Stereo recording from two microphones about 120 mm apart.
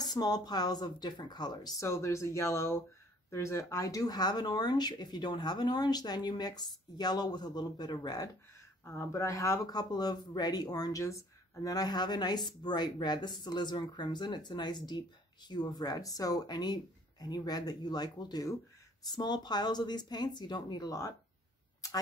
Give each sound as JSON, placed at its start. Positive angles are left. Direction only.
{"t": 0.1, "sound": "a man's voice", "side_deg": 35}
{"t": 8.8, "sound": "a man's voice", "side_deg": 20}